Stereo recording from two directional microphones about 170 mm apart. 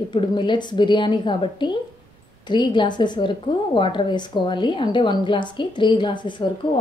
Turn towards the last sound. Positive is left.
turn(degrees=30)  # may be behind; listen again after turning